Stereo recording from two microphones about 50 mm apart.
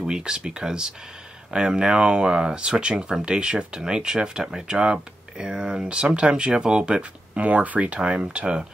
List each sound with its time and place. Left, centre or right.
0.0 s speech: centre